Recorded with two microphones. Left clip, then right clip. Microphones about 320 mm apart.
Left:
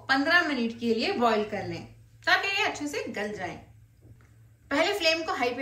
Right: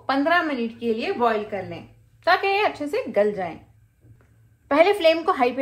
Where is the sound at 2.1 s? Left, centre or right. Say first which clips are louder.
Right 5 dB; centre.